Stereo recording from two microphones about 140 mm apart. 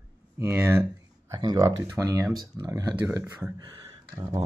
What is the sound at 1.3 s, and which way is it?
Speech, 30° right (ahead or behind).